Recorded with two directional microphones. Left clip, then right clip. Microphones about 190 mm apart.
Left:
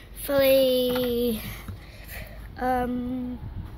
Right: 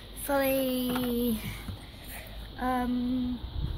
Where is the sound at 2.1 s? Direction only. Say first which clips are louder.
Left 4 dB; 40° left (ahead or behind).